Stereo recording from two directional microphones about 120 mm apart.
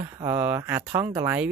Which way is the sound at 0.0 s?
25° right (ahead or behind).